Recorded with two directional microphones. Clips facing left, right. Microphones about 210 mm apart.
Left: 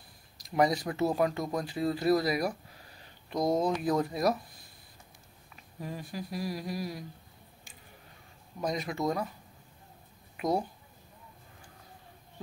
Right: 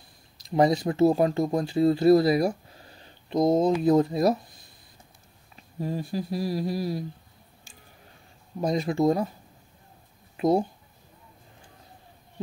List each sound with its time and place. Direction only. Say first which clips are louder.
0.4 s speech: right 5 dB; 25° right (ahead or behind)
5.6 s speech: right 9 dB; 30° right (ahead or behind)
8.5 s speech: right 8 dB; 30° right (ahead or behind)
10.3 s a sound: right 7 dB; 30° right (ahead or behind)